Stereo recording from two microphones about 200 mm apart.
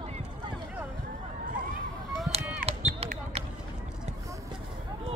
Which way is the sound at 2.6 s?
30° right (ahead or behind).